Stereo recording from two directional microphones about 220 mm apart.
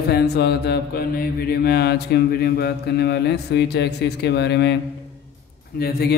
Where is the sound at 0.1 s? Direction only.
45° left (ahead or behind).